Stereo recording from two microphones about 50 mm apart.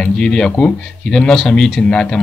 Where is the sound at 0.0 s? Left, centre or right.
Centre.